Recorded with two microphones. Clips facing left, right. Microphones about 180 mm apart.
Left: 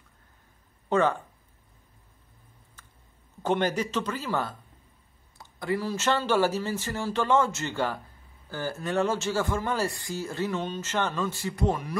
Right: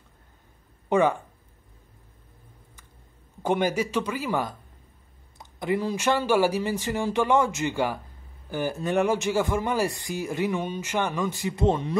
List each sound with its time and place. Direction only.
0.8 s speech: 15° right (ahead or behind)
3.4 s a man's voice: 10° right (ahead or behind)